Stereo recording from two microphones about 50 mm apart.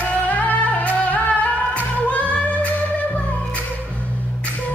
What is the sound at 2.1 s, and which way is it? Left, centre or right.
Singing, left.